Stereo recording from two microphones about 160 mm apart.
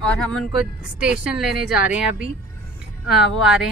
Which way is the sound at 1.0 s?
5° right (ahead or behind).